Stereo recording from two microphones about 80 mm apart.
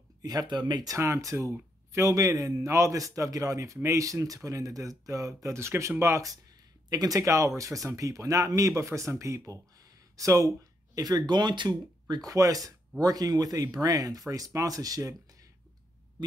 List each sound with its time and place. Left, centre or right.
0.2 s speech: right
0.8 s a man's voice: right
11.0 s a man's voice: right